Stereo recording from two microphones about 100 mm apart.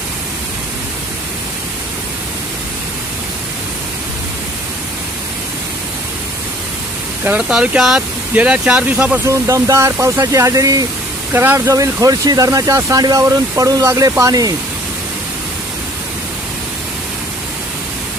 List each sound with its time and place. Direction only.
7.2 s speech: 10° right (ahead or behind)
9.2 s speech: 30° right (ahead or behind)
11.3 s speech: 25° right (ahead or behind)